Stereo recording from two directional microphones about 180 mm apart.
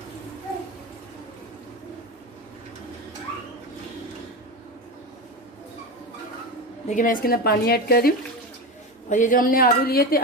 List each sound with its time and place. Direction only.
6.9 s a woman's voice: 50° left (ahead or behind)
9.1 s a woman's voice: 45° left (ahead or behind)